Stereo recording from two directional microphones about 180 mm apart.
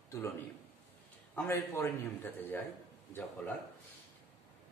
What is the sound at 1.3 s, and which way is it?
Speech, 10° left (ahead or behind).